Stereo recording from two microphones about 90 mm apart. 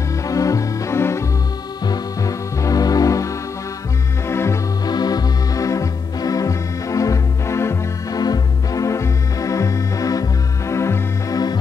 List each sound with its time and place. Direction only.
0.3 s organ: 40° left (ahead or behind)
1.9 s music: 40° left (ahead or behind)
4.3 s music: 30° left (ahead or behind)
4.8 s music: 50° left (ahead or behind); by 8.2 s 30° left (ahead or behind)
8.2 s organ: 45° left (ahead or behind)